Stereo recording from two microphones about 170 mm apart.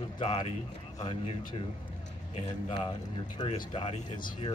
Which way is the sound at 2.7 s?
30° left (ahead or behind).